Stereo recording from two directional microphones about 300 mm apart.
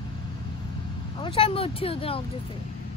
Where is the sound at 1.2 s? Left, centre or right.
Centre.